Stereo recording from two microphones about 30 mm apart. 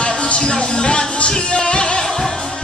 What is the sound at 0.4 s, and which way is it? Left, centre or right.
Music, left.